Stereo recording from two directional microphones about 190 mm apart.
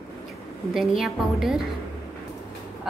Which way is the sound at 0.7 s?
Centre (ahead or behind).